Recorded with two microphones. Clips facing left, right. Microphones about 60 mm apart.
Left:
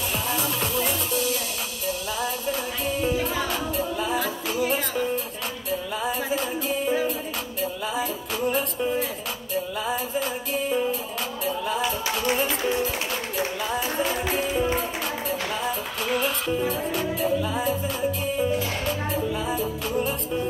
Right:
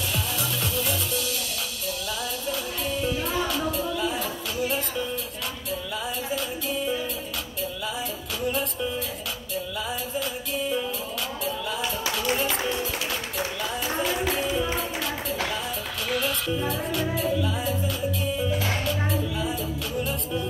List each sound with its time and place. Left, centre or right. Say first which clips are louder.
0.1 s music: left 4 dB; left
2.4 s music: left 2 dB; left
14.0 s music: even; left
16.1 s music: left 2 dB; left